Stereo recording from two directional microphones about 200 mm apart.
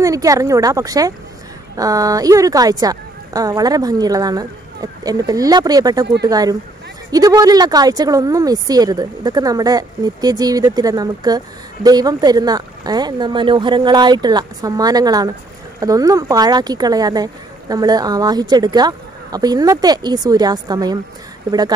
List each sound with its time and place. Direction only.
0.0 s a woman's voice: 15° right (ahead or behind)